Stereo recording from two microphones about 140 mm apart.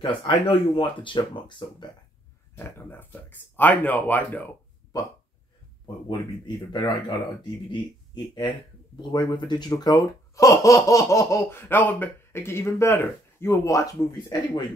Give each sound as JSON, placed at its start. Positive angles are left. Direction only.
{"t": 0.0, "sound": "speech", "side_deg": 35}
{"t": 2.5, "sound": "speech", "side_deg": 15}
{"t": 4.9, "sound": "speech", "side_deg": 25}